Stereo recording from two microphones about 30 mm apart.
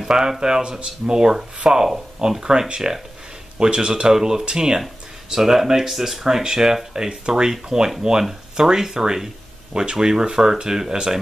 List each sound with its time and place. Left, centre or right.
0.1 s speech: centre
4.1 s speech: centre
6.2 s speech: right